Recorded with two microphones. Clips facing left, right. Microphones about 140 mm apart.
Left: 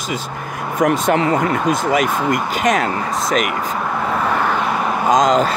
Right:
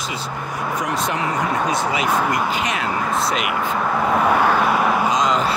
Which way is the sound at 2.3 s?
45° left (ahead or behind).